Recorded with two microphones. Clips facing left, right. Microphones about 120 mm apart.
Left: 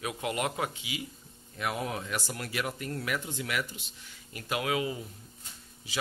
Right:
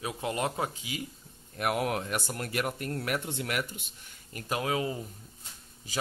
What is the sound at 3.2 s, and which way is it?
Speech, 55° right (ahead or behind).